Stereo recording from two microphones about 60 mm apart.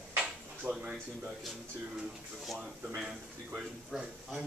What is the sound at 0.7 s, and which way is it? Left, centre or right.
Speech, right.